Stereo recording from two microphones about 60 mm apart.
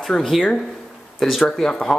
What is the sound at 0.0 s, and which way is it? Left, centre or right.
A man's voice, centre.